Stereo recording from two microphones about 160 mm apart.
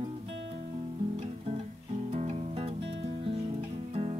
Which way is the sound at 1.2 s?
40° right (ahead or behind).